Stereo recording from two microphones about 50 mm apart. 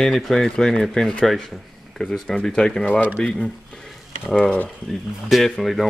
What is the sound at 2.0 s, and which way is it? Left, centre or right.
Speech, left.